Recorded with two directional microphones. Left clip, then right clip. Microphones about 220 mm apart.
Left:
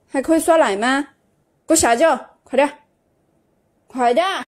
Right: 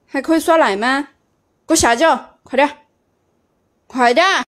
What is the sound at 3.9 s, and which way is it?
Speech, 5° right (ahead or behind).